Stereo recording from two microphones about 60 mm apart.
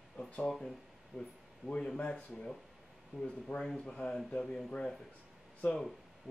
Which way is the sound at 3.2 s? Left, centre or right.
Centre.